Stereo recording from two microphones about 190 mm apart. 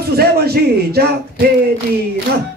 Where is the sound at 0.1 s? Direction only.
55° right (ahead or behind).